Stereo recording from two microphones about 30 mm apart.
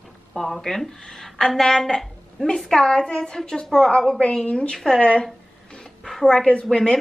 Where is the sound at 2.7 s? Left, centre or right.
Left.